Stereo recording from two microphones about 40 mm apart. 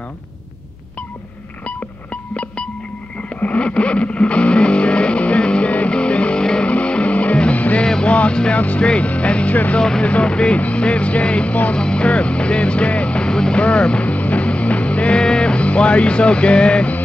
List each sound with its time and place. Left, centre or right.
3.5 s music: left
6.7 s music: left
7.8 s music: centre
8.1 s music: left
8.8 s speech: left
9.8 s vehicle: centre
10.6 s music: left
11.7 s vehicle: left
13.3 s speech: centre
13.6 s music: left